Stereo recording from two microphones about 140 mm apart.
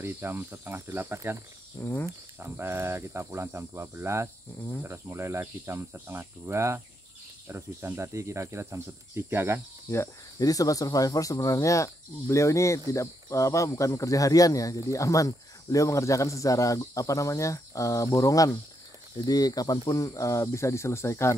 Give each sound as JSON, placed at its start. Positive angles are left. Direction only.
{"t": 0.0, "sound": "speech", "side_deg": -20}
{"t": 1.8, "sound": "speech", "side_deg": 20}
{"t": 2.3, "sound": "speech", "side_deg": -15}
{"t": 9.8, "sound": "speech", "side_deg": 20}